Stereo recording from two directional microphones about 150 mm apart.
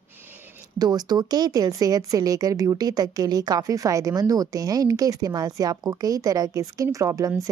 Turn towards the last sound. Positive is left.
turn(degrees=-20)  # may be behind; listen again after turning